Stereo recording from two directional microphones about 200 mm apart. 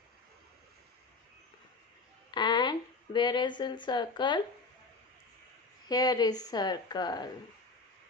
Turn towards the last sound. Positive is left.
turn(degrees=20)  # may be behind; listen again after turning